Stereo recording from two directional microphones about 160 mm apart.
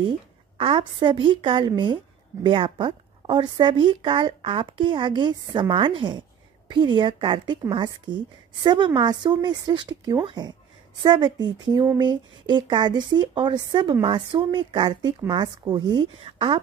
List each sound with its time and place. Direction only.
0.6 s a woman's voice: 30° right (ahead or behind)